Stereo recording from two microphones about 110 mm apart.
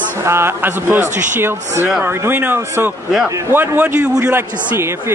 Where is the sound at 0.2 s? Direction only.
25° right (ahead or behind).